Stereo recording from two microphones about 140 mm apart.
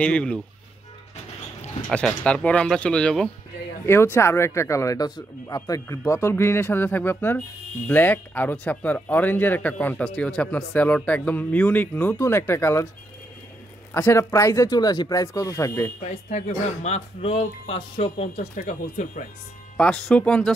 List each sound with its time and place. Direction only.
0.0 s speech: 5° left (ahead or behind)
1.9 s speech: 5° left (ahead or behind)
3.8 s speech: 20° left (ahead or behind)
13.9 s speech: 20° left (ahead or behind)
16.0 s speech: 55° left (ahead or behind)
18.5 s speech: 65° left (ahead or behind)
19.8 s speech: 5° left (ahead or behind)